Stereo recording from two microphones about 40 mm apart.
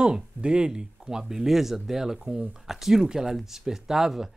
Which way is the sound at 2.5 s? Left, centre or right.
Centre.